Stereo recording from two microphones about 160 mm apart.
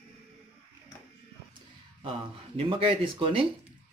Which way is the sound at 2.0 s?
35° right (ahead or behind).